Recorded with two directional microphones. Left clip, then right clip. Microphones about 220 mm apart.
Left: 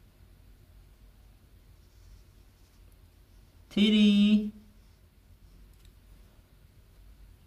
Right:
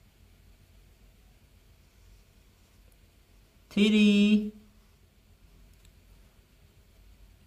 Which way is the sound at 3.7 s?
20° right (ahead or behind).